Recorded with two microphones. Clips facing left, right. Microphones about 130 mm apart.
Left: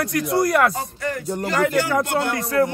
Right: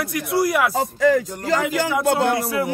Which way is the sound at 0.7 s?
90° right.